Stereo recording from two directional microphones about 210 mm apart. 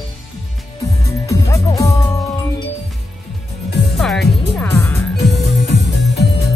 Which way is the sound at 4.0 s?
Centre (ahead or behind).